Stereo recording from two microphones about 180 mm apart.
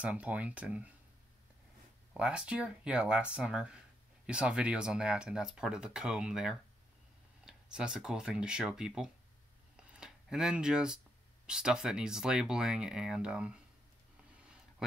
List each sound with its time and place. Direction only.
0.0 s speech: 5° right (ahead or behind)
2.1 s speech: 5° right (ahead or behind)
14.8 s speech: centre (ahead or behind)